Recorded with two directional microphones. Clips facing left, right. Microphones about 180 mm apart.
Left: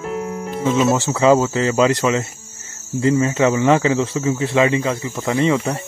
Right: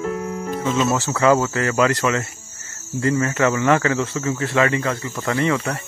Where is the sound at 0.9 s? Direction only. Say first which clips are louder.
Left 3 dB; 20° left (ahead or behind).